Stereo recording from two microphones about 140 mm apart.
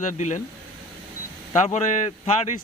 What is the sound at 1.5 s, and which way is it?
Speech, 55° left (ahead or behind).